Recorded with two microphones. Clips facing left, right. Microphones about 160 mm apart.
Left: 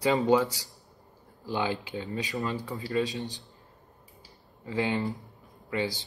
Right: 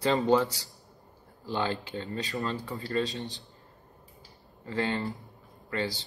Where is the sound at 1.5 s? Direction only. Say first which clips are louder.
Left 1 dB; 15° left (ahead or behind).